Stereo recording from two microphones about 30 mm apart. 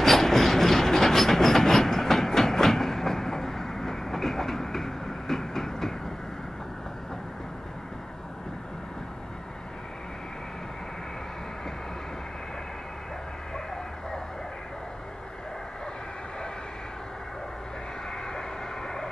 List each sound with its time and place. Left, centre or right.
0.0 s train: centre
18.3 s vehicle: left